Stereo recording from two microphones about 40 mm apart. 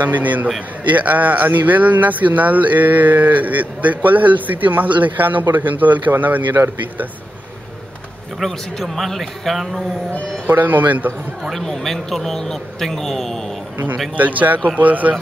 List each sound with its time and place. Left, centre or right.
0.0 s speech: right
8.4 s a man's voice: centre
10.4 s speech: right
11.5 s speech: centre
14.1 s speech: right